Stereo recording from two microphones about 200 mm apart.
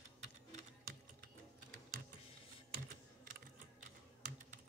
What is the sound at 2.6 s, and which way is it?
Typing, 45° right (ahead or behind).